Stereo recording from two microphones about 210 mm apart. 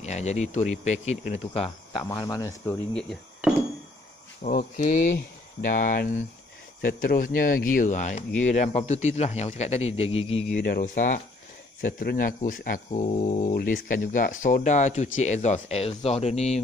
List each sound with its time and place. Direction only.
0.0 s speech: 30° left (ahead or behind); by 3.2 s 5° left (ahead or behind)
4.4 s speech: 35° left (ahead or behind)
10.6 s speech: 40° left (ahead or behind)